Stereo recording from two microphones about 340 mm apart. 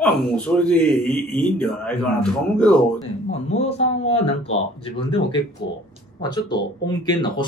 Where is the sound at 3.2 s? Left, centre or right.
Centre.